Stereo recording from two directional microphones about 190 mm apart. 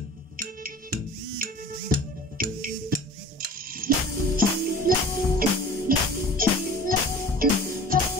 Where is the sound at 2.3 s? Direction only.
45° right (ahead or behind).